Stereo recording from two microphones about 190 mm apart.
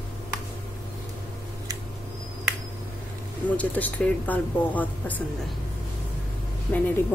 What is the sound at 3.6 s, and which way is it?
Speech, 10° left (ahead or behind).